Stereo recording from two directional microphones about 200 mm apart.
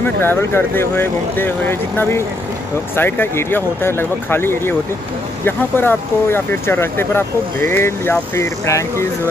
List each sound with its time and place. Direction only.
0.0 s speech: 10° left (ahead or behind)